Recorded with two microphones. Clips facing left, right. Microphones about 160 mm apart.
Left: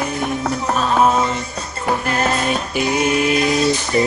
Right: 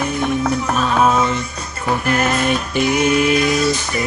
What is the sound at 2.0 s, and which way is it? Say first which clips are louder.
Mantra: right 3 dB; 30° left (ahead or behind).